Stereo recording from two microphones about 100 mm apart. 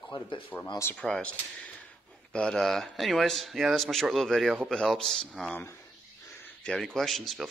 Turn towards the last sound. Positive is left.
turn(degrees=0)  # may be behind; listen again after turning